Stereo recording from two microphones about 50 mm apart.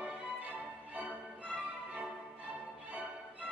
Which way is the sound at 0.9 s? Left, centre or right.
Right.